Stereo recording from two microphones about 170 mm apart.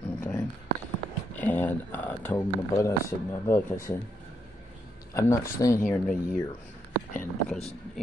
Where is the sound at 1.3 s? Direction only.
10° left (ahead or behind).